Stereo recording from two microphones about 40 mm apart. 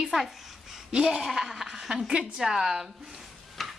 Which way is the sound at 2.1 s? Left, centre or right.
Centre.